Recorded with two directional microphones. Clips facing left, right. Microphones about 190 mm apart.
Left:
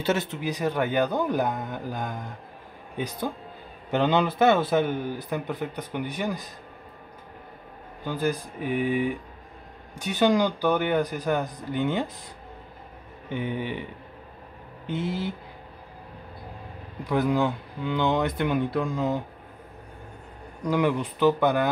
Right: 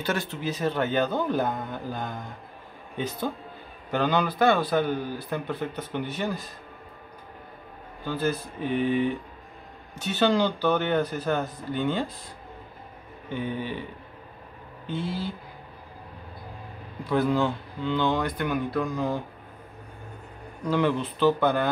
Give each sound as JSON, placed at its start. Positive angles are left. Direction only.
{"t": 0.0, "sound": "speech", "side_deg": 25}
{"t": 3.9, "sound": "a man's voice", "side_deg": 25}
{"t": 8.0, "sound": "speech", "side_deg": 15}
{"t": 13.3, "sound": "speech", "side_deg": 20}
{"t": 14.9, "sound": "a man's voice", "side_deg": 20}
{"t": 17.0, "sound": "a man's voice", "side_deg": 15}
{"t": 20.6, "sound": "speech", "side_deg": 15}